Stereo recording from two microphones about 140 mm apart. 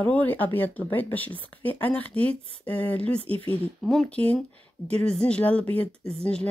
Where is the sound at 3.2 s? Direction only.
40° right (ahead or behind).